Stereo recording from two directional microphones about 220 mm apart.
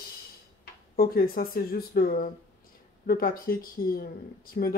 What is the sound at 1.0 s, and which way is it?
Speech, 45° left (ahead or behind).